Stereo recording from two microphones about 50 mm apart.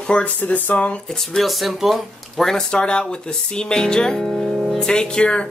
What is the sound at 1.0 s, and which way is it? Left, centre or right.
Speech, centre.